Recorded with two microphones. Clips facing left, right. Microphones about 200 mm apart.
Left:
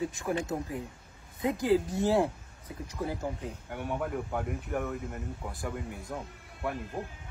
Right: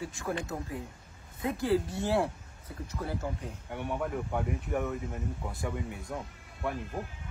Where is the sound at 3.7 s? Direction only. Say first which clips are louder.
Even; centre (ahead or behind).